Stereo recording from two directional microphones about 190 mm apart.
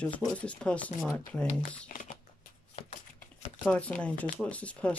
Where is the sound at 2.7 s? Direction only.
40° left (ahead or behind).